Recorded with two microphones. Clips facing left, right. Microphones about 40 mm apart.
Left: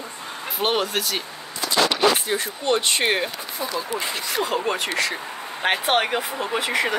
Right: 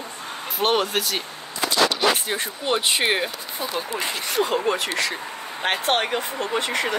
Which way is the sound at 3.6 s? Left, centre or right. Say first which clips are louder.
Even; right.